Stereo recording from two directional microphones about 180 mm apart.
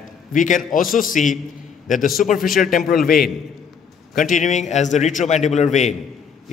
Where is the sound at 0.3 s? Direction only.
45° left (ahead or behind).